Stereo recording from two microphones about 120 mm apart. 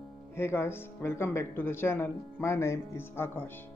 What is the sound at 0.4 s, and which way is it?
Speech, 20° left (ahead or behind).